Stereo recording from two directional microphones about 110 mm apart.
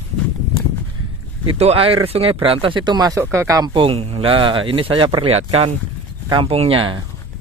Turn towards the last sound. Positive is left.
turn(degrees=-55)  # may be behind; listen again after turning